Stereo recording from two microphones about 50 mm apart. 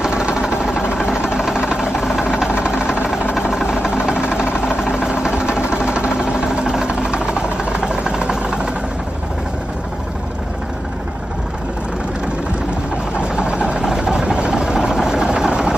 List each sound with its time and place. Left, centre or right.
0.0 s vehicle: centre
1.3 s a sound: centre
2.2 s vehicle: centre
13.2 s vehicle: centre